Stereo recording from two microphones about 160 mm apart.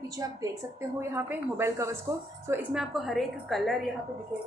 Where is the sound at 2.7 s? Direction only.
Centre (ahead or behind).